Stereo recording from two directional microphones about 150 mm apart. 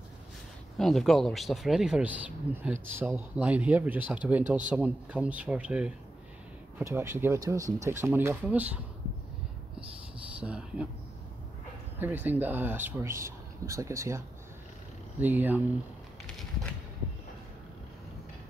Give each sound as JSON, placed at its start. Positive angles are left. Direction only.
{"t": 0.7, "sound": "speech", "side_deg": 0}
{"t": 10.4, "sound": "speech", "side_deg": -10}
{"t": 12.0, "sound": "speech", "side_deg": -10}